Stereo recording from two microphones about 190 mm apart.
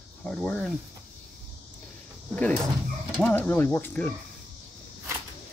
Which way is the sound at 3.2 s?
10° left (ahead or behind).